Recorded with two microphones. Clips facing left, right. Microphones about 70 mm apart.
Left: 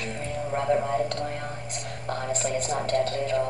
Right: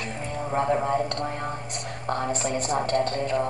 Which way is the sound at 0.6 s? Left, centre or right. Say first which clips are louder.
Right 1 dB; right.